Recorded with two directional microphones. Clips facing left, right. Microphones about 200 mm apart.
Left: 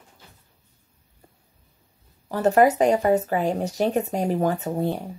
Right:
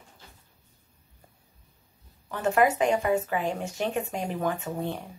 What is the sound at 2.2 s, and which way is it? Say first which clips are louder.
Speech: left 6 dB; 35° left (ahead or behind).